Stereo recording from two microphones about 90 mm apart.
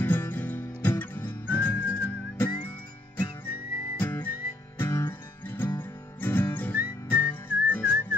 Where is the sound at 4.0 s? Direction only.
20° left (ahead or behind).